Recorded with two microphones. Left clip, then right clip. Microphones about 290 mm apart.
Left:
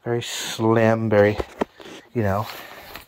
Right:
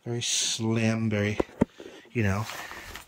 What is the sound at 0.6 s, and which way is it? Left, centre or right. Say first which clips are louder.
Speech: left 11 dB; left.